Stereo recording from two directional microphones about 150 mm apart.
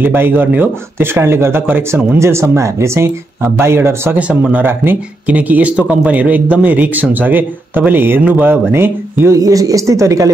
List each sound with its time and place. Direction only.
0.0 s speech: 15° right (ahead or behind)